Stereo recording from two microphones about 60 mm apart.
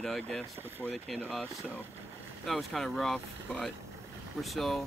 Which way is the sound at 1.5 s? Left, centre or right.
Right.